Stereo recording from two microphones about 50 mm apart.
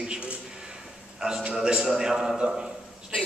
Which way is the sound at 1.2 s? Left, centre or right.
Centre.